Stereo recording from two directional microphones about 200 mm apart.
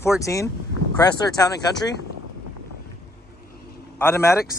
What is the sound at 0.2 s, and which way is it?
Speech, 15° left (ahead or behind).